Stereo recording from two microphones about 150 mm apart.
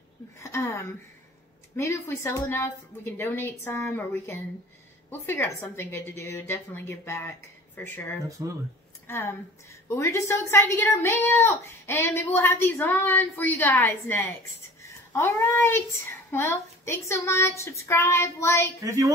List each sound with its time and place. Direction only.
0.4 s a woman's voice: 15° left (ahead or behind)
8.4 s speech: 25° right (ahead or behind)
9.0 s a woman's voice: 20° left (ahead or behind)
18.8 s speech: 20° right (ahead or behind)